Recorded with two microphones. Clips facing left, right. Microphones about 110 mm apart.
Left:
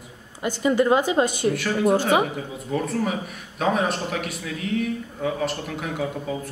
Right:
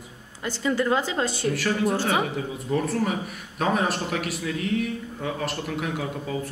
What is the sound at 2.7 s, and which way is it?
A man's voice, centre (ahead or behind).